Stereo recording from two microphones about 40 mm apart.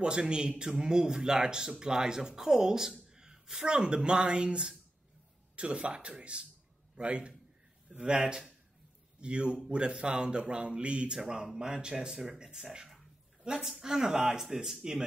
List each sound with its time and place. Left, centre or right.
0.0 s a man's voice: right
13.4 s a sound: centre
13.8 s a man's voice: centre